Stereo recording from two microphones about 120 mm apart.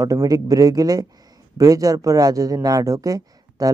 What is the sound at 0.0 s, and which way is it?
Speech, 30° right (ahead or behind).